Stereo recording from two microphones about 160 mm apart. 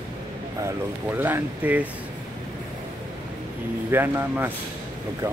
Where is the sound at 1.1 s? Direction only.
10° right (ahead or behind).